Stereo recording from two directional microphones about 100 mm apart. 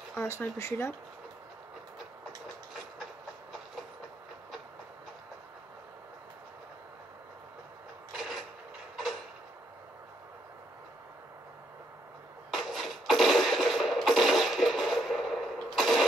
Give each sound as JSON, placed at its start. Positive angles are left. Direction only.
{"t": 0.2, "sound": "speech", "side_deg": 25}
{"t": 8.2, "sound": "mechanisms", "side_deg": 0}
{"t": 12.4, "sound": "music", "side_deg": 0}